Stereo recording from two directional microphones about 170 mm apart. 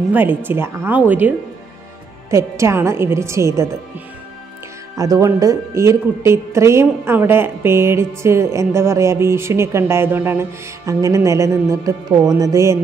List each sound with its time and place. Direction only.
0.1 s a woman's voice: 10° right (ahead or behind)
2.3 s a woman's voice: 15° right (ahead or behind)
4.9 s a woman's voice: 20° right (ahead or behind)